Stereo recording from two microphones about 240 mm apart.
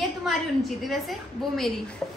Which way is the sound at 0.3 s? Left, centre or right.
Centre.